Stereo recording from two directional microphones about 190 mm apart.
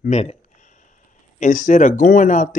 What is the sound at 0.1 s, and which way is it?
Speech, 30° left (ahead or behind).